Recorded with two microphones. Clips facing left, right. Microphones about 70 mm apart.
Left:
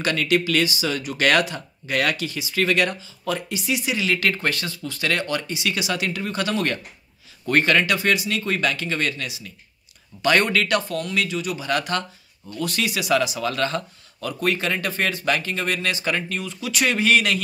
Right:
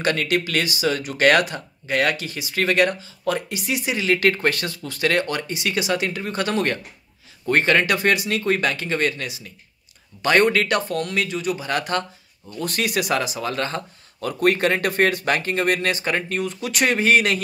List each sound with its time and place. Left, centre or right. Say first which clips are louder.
0.0 s speech: even; right
7.8 s speech: right 1 dB; right
12.5 s speech: right 2 dB; right
14.4 s speech: right 5 dB; right